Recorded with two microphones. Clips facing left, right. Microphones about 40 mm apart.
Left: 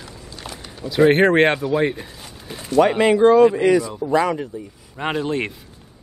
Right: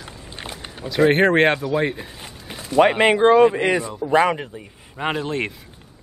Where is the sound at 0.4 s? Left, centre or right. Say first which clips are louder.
Right 2 dB; right.